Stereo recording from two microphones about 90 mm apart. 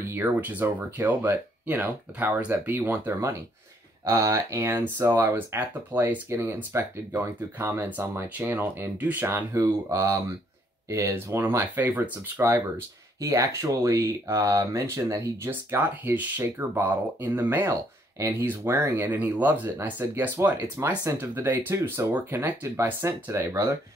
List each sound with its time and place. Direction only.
0.1 s speech: 20° right (ahead or behind)
4.1 s speech: 35° right (ahead or behind)